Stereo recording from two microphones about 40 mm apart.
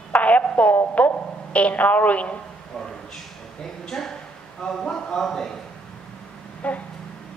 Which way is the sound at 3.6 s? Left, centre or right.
Centre.